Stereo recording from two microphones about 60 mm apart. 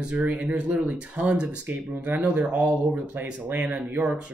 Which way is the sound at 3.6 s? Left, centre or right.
Right.